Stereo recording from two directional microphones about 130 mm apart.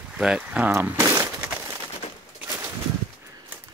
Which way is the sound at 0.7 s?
20° right (ahead or behind).